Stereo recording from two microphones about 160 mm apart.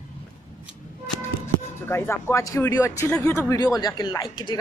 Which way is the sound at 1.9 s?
15° left (ahead or behind).